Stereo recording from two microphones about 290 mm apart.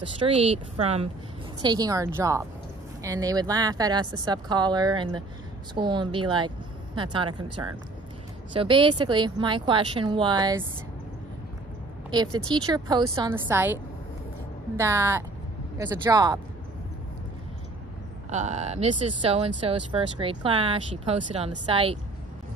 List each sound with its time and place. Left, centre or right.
0.0 s speech: centre
12.7 s speech: centre
14.8 s speech: centre
18.3 s speech: right